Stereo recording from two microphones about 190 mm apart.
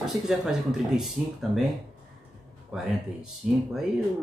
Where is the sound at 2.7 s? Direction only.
5° right (ahead or behind).